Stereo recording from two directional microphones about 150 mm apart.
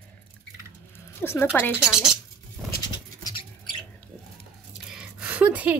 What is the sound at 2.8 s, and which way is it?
Bird, 30° left (ahead or behind).